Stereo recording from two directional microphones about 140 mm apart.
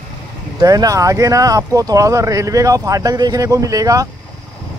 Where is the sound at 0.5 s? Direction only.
25° right (ahead or behind).